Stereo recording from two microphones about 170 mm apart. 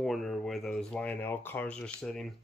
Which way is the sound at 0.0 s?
Centre (ahead or behind).